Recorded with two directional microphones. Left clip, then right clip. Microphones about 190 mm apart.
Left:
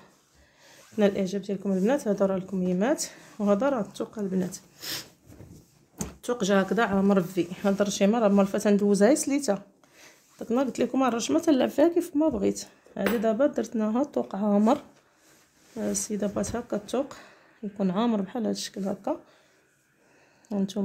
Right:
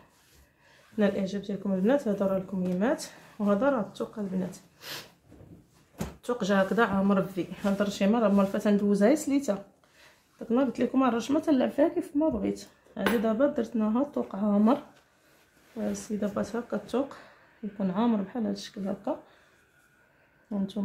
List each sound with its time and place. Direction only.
0.7 s speech: 45° left (ahead or behind)
6.2 s speech: 45° left (ahead or behind)
15.8 s speech: 40° left (ahead or behind)
20.4 s speech: 50° left (ahead or behind)